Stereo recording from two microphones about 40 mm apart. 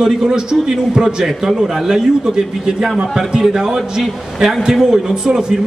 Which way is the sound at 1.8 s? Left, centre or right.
Centre.